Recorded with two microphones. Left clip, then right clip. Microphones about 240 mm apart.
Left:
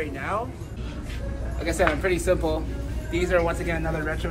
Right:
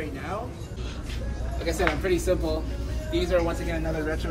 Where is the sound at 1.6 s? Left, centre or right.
Centre.